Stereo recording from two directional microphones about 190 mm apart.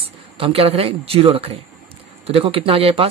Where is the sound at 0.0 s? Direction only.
30° right (ahead or behind).